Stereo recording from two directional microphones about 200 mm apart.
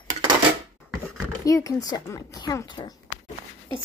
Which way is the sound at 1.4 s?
15° left (ahead or behind).